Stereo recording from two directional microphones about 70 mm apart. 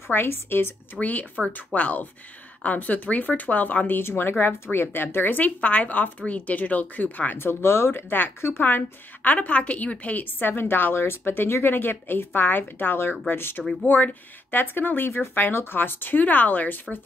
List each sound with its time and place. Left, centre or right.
0.1 s a woman's voice: left